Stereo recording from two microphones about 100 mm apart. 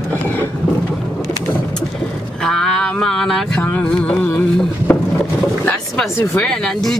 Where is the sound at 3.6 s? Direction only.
15° left (ahead or behind).